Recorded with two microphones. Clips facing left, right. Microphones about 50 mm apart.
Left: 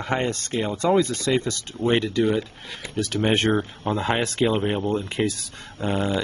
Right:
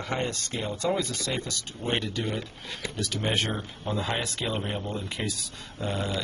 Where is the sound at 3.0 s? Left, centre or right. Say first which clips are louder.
Left 7 dB; left.